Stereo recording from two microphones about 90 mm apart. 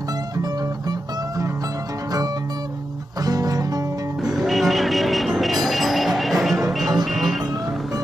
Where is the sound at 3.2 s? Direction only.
45° right (ahead or behind).